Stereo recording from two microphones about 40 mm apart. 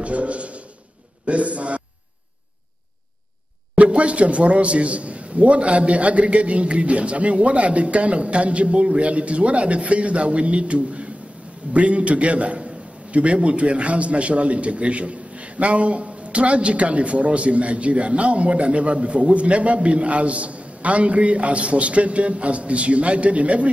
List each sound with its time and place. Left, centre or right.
0.0 s a man's voice: right
3.7 s a man's voice: right